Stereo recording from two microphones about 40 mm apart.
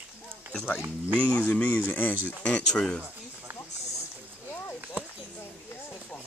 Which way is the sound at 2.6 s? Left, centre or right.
Centre.